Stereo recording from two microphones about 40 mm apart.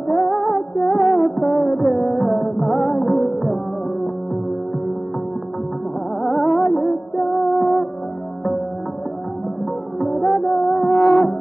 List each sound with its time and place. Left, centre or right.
0.1 s music: centre
6.2 s music: centre
9.9 s music: centre
11.0 s music: centre